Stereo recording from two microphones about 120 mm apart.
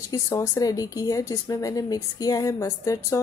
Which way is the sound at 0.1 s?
25° left (ahead or behind).